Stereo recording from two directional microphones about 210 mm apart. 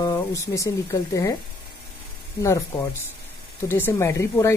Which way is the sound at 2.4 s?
15° left (ahead or behind).